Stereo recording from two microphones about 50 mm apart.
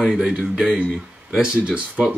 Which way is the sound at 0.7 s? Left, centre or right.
Right.